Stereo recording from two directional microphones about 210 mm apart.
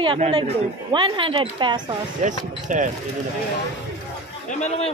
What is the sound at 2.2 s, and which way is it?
Speech, 35° right (ahead or behind).